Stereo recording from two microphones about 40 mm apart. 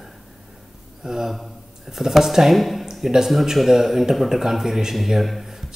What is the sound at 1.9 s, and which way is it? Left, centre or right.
Speech, centre.